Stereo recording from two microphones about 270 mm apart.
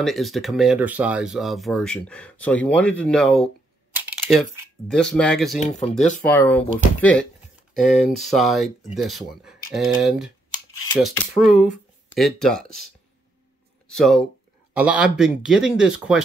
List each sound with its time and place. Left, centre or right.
0.0 s speech: centre
5.6 s speech: left
6.2 s speech: centre
13.8 s speech: centre